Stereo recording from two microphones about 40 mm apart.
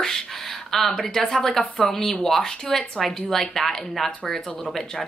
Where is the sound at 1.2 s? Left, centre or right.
Centre.